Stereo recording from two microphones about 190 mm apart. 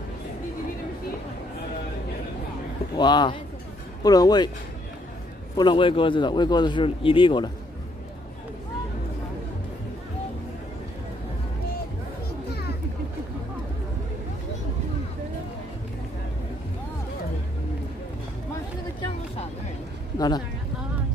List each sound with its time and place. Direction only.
3.0 s speech: 25° left (ahead or behind)
5.6 s speech: 25° left (ahead or behind)
12.4 s children playing: 55° left (ahead or behind)
20.2 s a sound: 20° left (ahead or behind)